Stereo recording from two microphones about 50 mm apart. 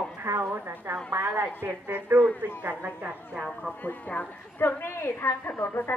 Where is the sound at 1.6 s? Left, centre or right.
Right.